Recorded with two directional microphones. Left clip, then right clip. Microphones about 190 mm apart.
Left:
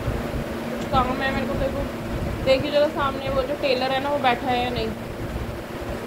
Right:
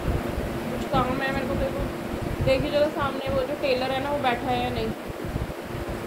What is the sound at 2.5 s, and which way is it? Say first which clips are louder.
A woman's voice: left 3 dB; 10° left (ahead or behind).